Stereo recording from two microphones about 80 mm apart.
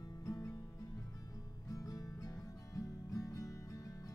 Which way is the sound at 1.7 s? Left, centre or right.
Left.